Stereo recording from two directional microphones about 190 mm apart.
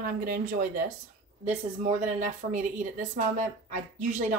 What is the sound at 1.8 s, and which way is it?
A woman's voice, 40° right (ahead or behind).